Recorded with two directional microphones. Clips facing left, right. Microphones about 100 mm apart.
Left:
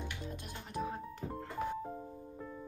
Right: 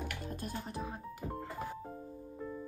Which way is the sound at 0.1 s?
45° right (ahead or behind).